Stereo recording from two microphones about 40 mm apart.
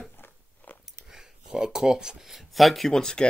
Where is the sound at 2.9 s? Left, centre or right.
Centre.